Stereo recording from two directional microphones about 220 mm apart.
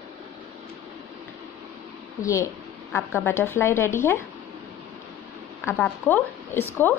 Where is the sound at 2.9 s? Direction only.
10° left (ahead or behind).